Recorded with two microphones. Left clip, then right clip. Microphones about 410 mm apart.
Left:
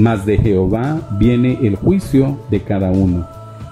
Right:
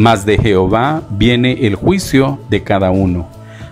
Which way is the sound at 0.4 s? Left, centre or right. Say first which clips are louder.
Right 5 dB; right.